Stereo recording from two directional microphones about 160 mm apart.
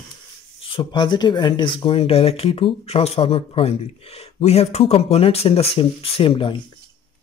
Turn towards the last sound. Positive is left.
turn(degrees=35)  # may be behind; listen again after turning